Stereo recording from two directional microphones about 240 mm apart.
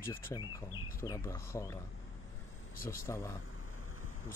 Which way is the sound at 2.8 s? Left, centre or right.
Left.